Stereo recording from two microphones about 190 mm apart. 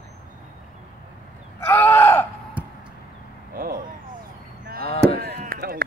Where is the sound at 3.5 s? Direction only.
50° right (ahead or behind).